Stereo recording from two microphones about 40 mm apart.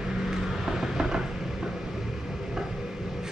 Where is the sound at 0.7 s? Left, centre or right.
Centre.